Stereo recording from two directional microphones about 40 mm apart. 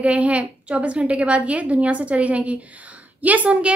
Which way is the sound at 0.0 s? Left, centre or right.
Right.